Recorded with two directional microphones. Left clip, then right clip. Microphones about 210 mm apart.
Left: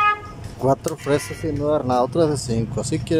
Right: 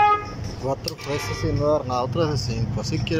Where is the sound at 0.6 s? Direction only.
30° left (ahead or behind).